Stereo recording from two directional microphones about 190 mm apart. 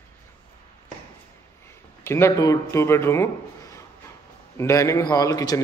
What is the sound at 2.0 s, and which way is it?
A man's voice, 15° left (ahead or behind).